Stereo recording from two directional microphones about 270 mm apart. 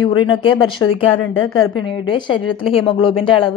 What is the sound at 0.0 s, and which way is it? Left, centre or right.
A woman's voice, centre.